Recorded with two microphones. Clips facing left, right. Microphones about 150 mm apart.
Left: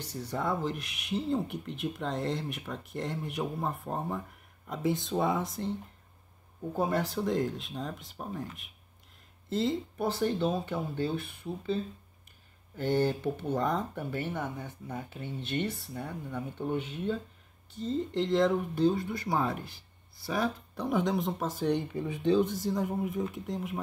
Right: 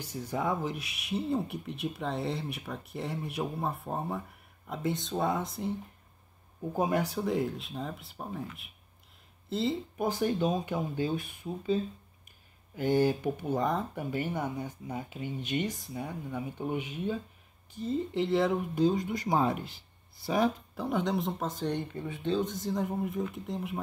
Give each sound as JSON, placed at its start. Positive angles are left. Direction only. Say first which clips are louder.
{"t": 0.0, "sound": "speech", "louder": "right 1 dB", "side_deg": -10}
{"t": 9.5, "sound": "speech", "louder": "left 1 dB", "side_deg": 0}
{"t": 9.9, "sound": "speech", "louder": "right 2 dB", "side_deg": -10}
{"t": 13.7, "sound": "speech", "louder": "even", "side_deg": 0}
{"t": 14.1, "sound": "speech", "louder": "right 3 dB", "side_deg": -10}
{"t": 20.7, "sound": "speech", "louder": "left 1 dB", "side_deg": 0}